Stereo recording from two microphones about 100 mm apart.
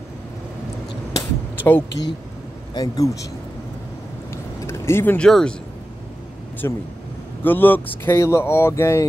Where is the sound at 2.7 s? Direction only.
35° left (ahead or behind).